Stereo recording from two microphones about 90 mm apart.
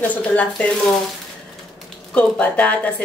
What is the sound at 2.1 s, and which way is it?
Speech, 15° left (ahead or behind).